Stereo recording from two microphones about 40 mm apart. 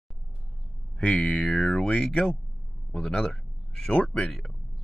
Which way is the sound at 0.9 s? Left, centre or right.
Left.